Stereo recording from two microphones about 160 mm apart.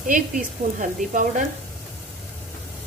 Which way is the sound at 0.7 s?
55° right (ahead or behind).